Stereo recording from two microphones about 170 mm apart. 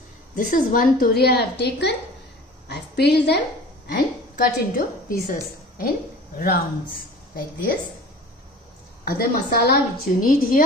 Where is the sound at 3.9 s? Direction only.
60° left (ahead or behind).